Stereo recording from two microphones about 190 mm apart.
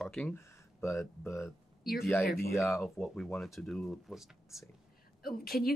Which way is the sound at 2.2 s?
55° left (ahead or behind).